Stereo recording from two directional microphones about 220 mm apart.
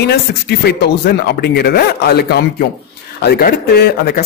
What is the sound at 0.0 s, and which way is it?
Speech, 50° left (ahead or behind).